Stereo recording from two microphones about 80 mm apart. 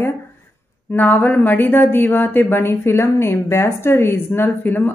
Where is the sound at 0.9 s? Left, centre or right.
Left.